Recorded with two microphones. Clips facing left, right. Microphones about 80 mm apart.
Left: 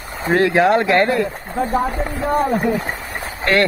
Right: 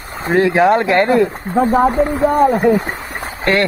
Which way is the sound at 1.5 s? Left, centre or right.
Right.